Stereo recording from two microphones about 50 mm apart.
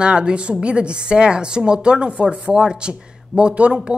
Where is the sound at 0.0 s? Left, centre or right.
Centre.